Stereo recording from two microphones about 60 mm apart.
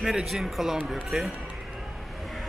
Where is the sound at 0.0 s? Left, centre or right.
Centre.